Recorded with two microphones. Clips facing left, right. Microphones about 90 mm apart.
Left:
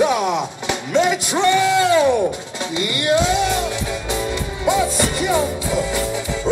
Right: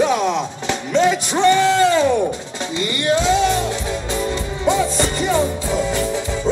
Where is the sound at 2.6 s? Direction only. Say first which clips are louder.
Even; 15° left (ahead or behind).